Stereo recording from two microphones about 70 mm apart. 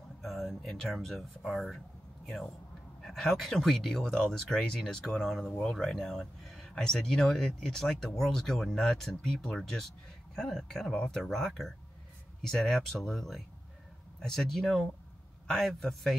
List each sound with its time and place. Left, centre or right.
0.2 s speech: centre
3.0 s speech: centre